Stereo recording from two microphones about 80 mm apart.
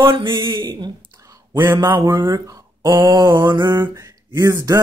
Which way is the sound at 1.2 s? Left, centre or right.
Right.